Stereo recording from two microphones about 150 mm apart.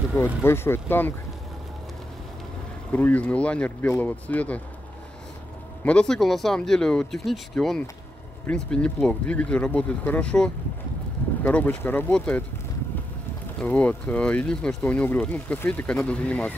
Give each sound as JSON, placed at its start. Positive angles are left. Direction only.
{"t": 0.2, "sound": "speech", "side_deg": 15}
{"t": 2.9, "sound": "speech", "side_deg": 10}
{"t": 5.9, "sound": "speech", "side_deg": 5}
{"t": 13.6, "sound": "speech", "side_deg": 10}